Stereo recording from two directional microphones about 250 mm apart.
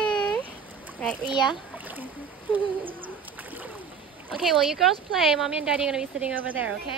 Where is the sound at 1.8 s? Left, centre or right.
Centre.